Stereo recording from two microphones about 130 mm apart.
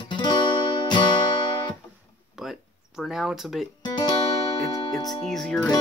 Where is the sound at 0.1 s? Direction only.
40° left (ahead or behind).